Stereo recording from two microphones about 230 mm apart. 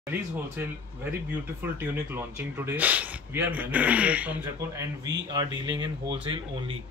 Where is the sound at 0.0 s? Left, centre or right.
Centre.